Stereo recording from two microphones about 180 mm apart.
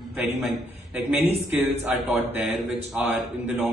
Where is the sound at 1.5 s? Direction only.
10° right (ahead or behind).